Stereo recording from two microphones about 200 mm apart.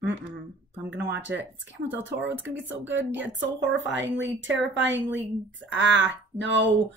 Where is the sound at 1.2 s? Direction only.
60° right (ahead or behind).